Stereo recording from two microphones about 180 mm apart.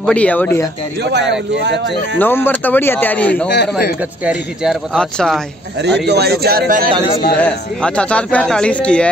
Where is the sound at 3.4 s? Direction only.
70° left (ahead or behind).